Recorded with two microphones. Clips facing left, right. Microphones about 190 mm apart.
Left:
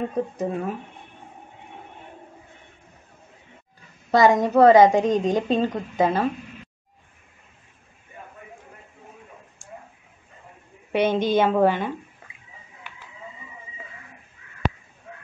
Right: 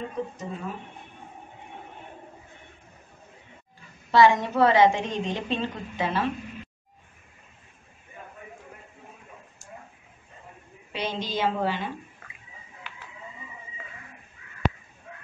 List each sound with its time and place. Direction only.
0.4 s a woman's voice: 60° left (ahead or behind)
4.1 s a woman's voice: 45° left (ahead or behind)
10.9 s a woman's voice: 55° left (ahead or behind)